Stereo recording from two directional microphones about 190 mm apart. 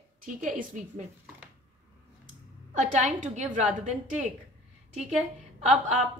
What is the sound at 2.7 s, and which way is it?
A woman's voice, 40° right (ahead or behind).